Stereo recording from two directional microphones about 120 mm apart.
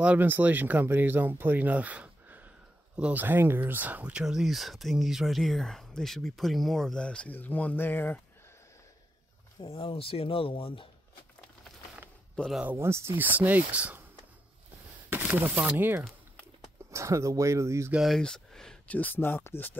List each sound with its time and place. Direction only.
0.0 s speech: 15° right (ahead or behind); by 8.2 s 15° left (ahead or behind)
9.6 s speech: 50° left (ahead or behind)
12.4 s speech: centre (ahead or behind)
12.6 s speech: 20° right (ahead or behind)
15.0 s speech: 15° right (ahead or behind)
17.9 s speech: centre (ahead or behind); by 19.8 s 15° left (ahead or behind)